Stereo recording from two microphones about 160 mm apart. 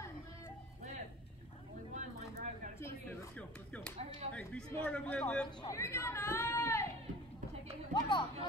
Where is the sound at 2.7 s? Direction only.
15° left (ahead or behind).